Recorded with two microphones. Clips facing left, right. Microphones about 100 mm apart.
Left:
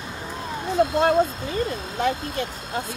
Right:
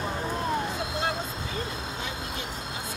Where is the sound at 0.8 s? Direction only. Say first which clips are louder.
Left 14 dB; 45° left (ahead or behind).